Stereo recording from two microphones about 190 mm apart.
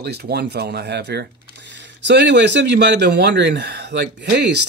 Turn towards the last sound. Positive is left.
turn(degrees=-60)  # may be behind; listen again after turning